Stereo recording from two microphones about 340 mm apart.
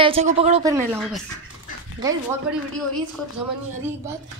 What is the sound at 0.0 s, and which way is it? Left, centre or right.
Speech, centre.